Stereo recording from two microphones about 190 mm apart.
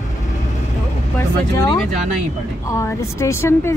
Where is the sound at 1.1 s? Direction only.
20° left (ahead or behind).